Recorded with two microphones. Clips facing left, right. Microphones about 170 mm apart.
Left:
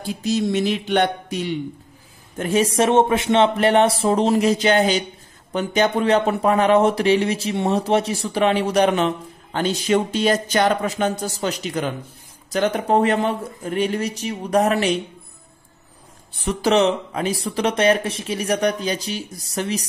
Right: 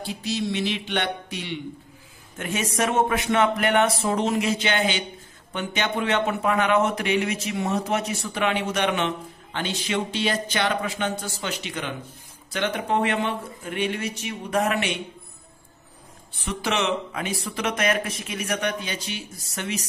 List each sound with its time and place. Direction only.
0.0 s speech: 45° left (ahead or behind)
16.3 s speech: 40° left (ahead or behind)